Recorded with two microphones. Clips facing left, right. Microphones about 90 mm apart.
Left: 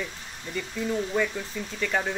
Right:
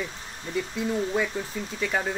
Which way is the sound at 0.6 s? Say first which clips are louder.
Right 2 dB; 10° right (ahead or behind).